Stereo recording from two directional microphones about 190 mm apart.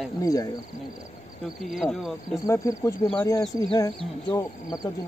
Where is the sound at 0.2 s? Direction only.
20° left (ahead or behind).